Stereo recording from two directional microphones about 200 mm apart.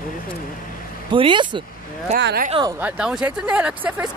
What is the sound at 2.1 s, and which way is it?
Speech, 60° right (ahead or behind).